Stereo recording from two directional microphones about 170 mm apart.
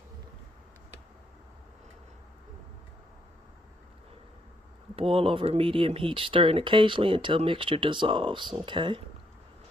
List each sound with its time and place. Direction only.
4.9 s speech: 35° right (ahead or behind)